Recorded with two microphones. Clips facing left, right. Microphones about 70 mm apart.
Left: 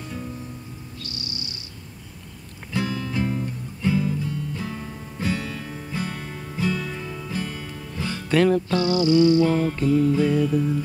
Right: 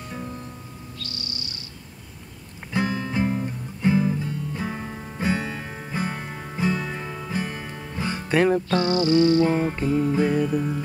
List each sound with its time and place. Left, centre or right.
2.7 s music: right
8.6 s music: right
9.5 s music: right